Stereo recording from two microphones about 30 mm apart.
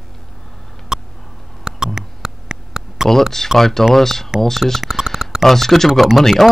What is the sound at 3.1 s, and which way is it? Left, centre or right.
Speech, centre.